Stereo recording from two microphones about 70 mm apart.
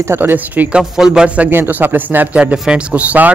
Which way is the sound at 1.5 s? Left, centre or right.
Right.